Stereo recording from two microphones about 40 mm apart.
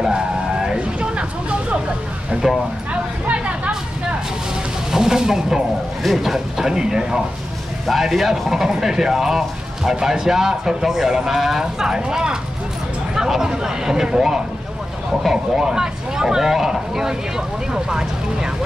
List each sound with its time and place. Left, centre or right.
0.0 s music: centre
0.7 s a sound: right
2.4 s speech: centre
2.9 s a sound: right
4.9 s speech: centre
15.5 s speech: centre